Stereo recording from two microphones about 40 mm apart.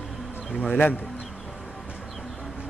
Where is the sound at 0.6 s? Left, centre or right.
Left.